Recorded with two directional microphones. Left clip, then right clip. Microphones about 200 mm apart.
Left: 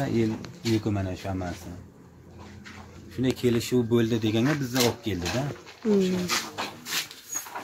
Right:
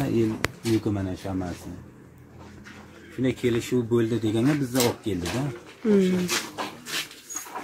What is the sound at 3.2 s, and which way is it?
Speech, 50° left (ahead or behind).